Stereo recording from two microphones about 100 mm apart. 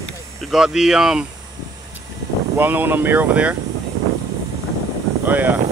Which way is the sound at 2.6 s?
20° right (ahead or behind).